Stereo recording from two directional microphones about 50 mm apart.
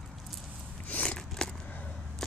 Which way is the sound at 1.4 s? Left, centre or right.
Centre.